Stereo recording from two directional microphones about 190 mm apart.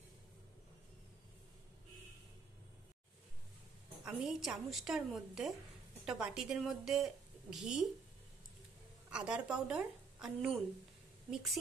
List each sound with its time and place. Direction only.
4.0 s a woman's voice: centre (ahead or behind)
9.1 s a woman's voice: 5° right (ahead or behind)